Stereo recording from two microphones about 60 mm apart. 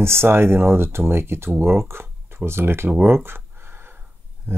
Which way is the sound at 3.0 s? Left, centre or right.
Right.